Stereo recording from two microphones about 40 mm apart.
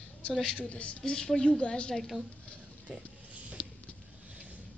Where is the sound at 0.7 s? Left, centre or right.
Left.